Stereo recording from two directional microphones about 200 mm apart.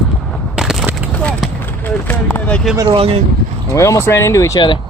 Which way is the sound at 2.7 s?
30° right (ahead or behind).